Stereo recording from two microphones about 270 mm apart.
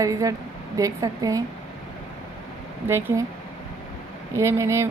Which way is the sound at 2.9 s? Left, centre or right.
Centre.